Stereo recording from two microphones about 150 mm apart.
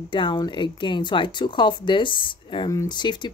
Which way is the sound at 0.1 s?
30° left (ahead or behind).